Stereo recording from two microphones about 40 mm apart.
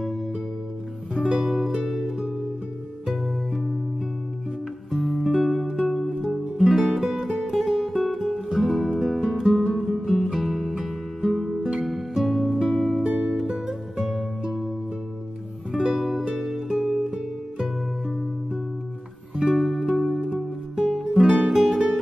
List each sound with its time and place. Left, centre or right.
1.1 s music: right
1.4 s music: centre
4.9 s music: centre
6.2 s music: centre
13.0 s music: right
13.3 s music: centre
15.7 s music: centre
16.0 s music: centre
17.1 s music: centre
19.5 s music: centre